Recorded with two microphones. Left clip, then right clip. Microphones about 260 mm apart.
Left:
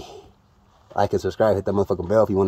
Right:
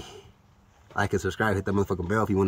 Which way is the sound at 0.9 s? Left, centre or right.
Right.